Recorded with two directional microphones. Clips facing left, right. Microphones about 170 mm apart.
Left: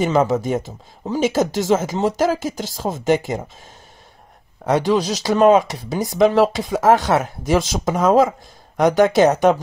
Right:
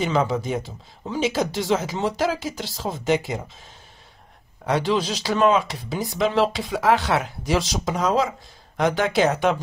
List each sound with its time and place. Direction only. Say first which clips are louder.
0.0 s speech: left 5 dB; 45° left (ahead or behind)
4.6 s speech: left 5 dB; 45° left (ahead or behind)